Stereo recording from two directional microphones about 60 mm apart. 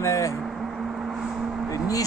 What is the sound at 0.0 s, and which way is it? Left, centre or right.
Vehicle, left.